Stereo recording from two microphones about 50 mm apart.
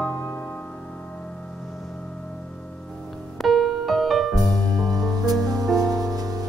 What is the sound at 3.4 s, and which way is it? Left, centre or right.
Music, centre.